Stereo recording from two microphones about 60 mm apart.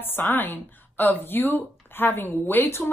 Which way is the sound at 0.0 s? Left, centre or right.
Left.